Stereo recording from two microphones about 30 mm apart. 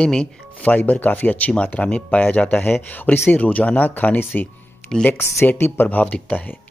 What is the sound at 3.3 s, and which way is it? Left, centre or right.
Speech, left.